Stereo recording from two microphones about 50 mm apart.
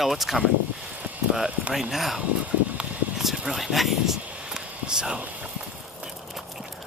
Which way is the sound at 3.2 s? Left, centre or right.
Centre.